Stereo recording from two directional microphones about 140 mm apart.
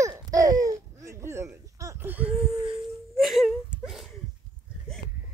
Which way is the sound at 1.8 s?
15° right (ahead or behind).